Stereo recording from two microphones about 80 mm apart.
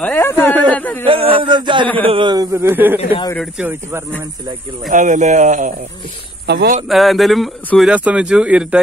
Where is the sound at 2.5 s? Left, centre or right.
Right.